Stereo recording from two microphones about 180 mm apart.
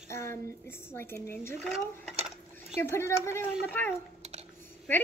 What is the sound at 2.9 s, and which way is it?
A woman's voice, 15° left (ahead or behind).